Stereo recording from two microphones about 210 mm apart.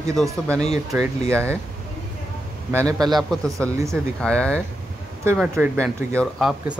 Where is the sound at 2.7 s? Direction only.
15° right (ahead or behind).